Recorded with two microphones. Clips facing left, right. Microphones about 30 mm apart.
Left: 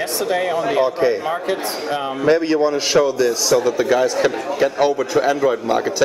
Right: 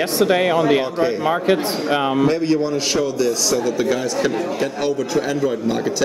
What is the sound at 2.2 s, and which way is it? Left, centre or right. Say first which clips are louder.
A man's voice: left 2 dB; centre.